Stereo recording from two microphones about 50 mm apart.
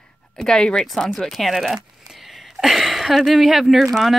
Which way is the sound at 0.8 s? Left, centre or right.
Centre.